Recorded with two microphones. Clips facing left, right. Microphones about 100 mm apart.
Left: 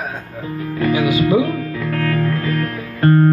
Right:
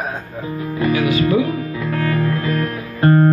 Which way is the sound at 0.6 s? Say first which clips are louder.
Even; 20° right (ahead or behind).